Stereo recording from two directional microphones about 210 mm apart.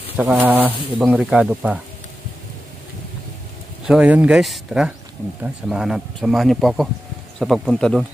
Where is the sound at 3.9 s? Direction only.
5° right (ahead or behind).